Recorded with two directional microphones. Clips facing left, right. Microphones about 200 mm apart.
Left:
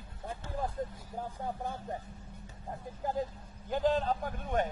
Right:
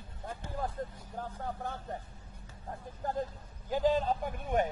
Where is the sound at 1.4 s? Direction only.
15° left (ahead or behind).